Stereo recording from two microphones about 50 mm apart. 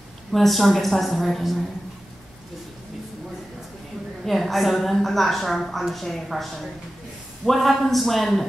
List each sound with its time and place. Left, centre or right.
0.3 s a woman's voice: centre
4.2 s a woman's voice: centre